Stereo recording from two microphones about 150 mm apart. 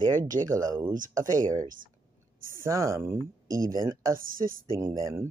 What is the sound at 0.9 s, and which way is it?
Speech, 60° right (ahead or behind).